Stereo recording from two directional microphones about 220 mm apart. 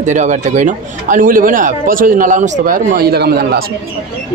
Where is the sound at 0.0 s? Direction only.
35° right (ahead or behind).